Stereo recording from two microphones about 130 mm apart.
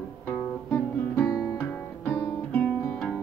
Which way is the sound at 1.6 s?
15° left (ahead or behind).